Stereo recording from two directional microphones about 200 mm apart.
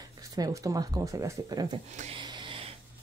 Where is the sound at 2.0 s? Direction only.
25° right (ahead or behind).